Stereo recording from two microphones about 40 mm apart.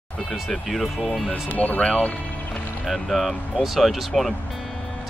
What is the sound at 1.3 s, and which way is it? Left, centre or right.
Speech, left.